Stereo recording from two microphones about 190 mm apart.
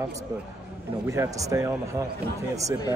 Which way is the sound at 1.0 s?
15° right (ahead or behind).